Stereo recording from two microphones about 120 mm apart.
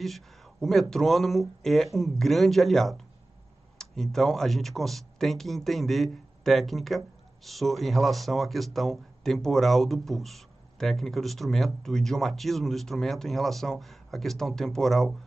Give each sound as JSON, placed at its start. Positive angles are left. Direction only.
{"t": 0.0, "sound": "speech", "side_deg": 0}